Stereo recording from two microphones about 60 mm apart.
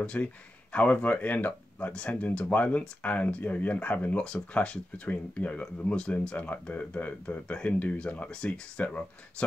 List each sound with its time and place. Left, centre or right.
0.0 s speech: left